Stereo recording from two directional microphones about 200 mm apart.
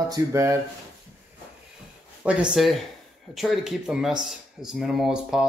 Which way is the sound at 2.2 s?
5° right (ahead or behind).